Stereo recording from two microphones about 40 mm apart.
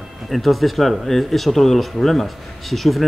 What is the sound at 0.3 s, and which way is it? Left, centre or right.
A man's voice, centre.